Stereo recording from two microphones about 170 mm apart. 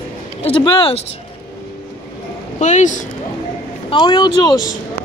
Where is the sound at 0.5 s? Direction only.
30° left (ahead or behind).